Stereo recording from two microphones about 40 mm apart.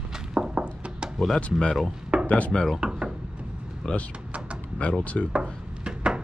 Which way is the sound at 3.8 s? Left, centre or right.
Left.